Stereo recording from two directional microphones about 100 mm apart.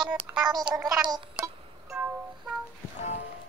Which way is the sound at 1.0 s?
45° right (ahead or behind).